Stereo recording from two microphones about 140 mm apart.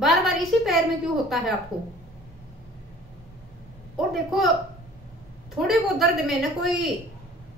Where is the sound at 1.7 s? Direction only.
35° right (ahead or behind).